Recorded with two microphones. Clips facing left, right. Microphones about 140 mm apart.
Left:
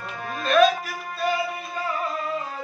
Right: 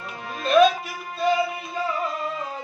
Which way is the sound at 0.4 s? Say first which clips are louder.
Right 1 dB; 25° right (ahead or behind).